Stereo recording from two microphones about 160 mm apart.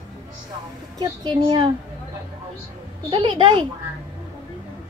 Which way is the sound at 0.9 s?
25° right (ahead or behind).